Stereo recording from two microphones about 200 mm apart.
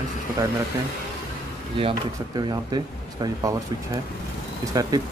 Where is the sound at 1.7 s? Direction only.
25° right (ahead or behind).